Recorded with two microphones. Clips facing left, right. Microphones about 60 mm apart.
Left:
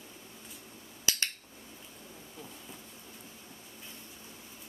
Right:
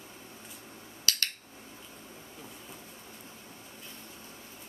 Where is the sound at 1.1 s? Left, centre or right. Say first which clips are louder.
Right 1 dB; left.